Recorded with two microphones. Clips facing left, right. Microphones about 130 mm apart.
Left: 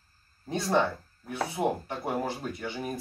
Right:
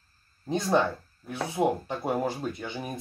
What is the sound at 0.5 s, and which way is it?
Speech, 20° right (ahead or behind).